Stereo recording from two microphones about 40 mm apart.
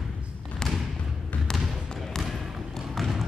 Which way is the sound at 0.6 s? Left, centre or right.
Centre.